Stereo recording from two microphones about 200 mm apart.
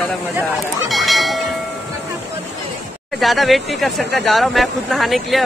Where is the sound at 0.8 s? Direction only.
Centre (ahead or behind).